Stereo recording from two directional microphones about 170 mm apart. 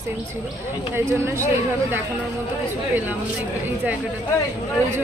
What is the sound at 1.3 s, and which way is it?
Speech, 15° right (ahead or behind).